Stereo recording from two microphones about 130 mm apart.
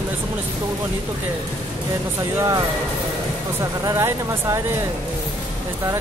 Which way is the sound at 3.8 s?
20° right (ahead or behind).